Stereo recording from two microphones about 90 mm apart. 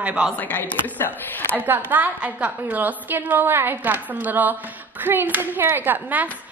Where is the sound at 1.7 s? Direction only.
20° right (ahead or behind).